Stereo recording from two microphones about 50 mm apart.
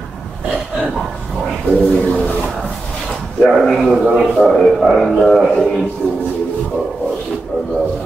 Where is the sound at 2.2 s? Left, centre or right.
Left.